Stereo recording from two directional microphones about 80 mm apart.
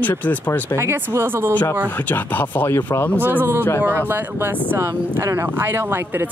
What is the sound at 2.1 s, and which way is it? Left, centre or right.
Speech, left.